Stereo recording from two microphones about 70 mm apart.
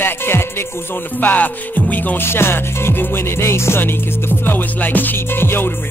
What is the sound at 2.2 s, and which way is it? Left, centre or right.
Music, left.